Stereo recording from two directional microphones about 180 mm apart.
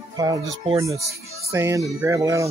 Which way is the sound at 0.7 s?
15° right (ahead or behind).